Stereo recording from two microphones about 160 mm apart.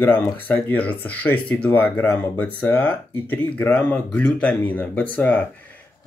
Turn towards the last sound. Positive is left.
turn(degrees=10)  # may be behind; listen again after turning